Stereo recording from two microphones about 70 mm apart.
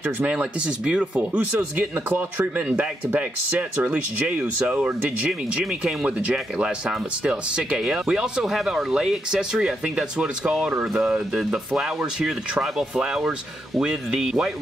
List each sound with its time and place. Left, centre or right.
0.3 s speech: centre